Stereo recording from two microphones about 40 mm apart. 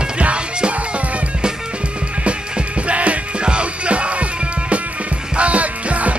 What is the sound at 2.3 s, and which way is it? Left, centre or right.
Music, right.